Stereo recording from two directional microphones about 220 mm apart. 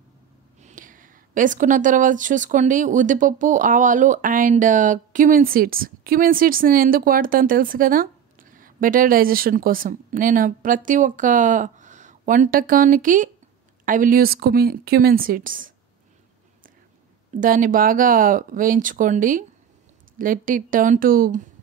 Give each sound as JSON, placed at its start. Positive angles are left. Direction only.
{"t": 0.6, "sound": "speech", "side_deg": -35}
{"t": 17.4, "sound": "speech", "side_deg": -40}